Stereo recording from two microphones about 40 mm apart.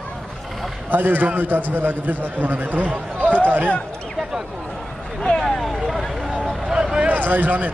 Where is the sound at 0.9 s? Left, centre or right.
Right.